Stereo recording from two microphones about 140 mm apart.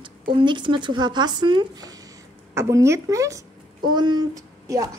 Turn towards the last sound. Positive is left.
turn(degrees=-25)  # may be behind; listen again after turning